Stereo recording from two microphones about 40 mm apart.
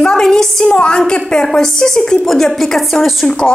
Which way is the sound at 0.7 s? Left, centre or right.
Left.